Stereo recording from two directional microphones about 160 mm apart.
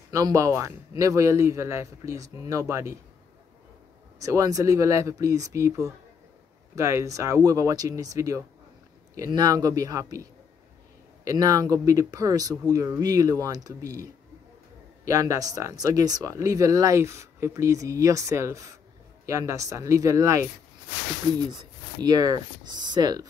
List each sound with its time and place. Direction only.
0.1 s speech: 20° right (ahead or behind)
4.2 s speech: 20° right (ahead or behind)
11.2 s speech: 20° right (ahead or behind)
15.0 s speech: 20° right (ahead or behind)
22.0 s speech: 25° right (ahead or behind)